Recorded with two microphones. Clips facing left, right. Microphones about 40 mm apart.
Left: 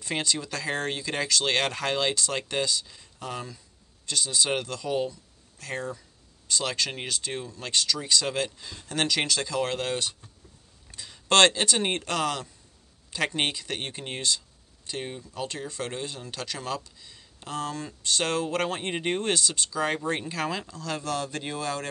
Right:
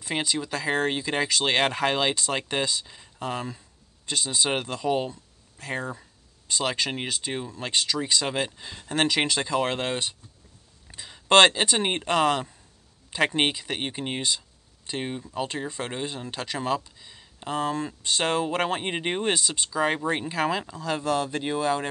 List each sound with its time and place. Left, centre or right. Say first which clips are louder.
0.0 s speech: right 1 dB; centre